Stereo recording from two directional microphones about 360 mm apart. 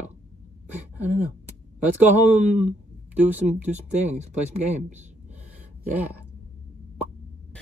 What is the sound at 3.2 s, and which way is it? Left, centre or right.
Speech, centre.